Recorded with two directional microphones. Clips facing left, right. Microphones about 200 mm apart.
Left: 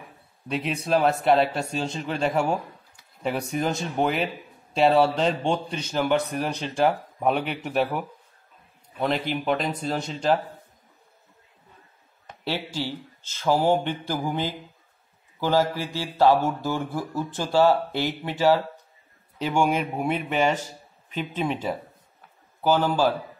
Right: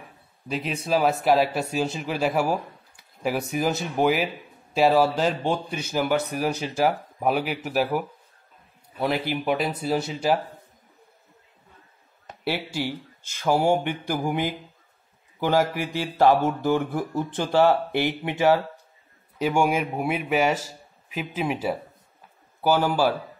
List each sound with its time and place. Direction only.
0.5 s speech: centre (ahead or behind)
12.3 s speech: 10° right (ahead or behind)